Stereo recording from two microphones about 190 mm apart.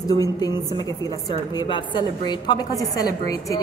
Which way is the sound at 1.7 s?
25° left (ahead or behind).